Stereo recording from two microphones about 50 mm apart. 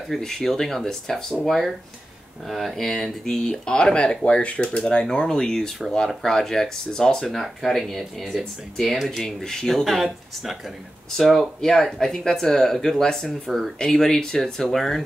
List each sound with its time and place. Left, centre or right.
0.1 s speech: centre
8.7 s speech: centre